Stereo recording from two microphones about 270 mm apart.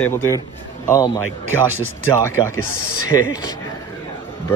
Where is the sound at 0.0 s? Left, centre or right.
Centre.